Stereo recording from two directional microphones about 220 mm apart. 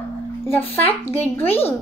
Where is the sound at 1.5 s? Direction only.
25° left (ahead or behind).